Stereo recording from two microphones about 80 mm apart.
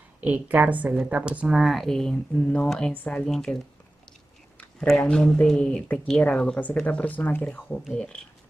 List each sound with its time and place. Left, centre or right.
0.2 s a woman's voice: right
1.5 s speech: centre
3.3 s speech: centre
4.8 s speech: centre